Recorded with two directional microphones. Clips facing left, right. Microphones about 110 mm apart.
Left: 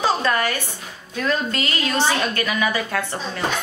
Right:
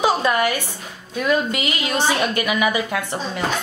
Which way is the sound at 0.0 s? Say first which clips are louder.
Right 2 dB; 15° right (ahead or behind).